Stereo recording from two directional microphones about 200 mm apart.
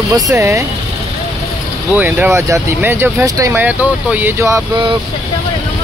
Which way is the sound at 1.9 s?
10° right (ahead or behind).